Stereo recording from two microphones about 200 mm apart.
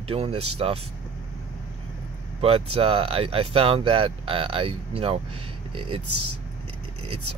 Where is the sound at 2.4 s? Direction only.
30° right (ahead or behind).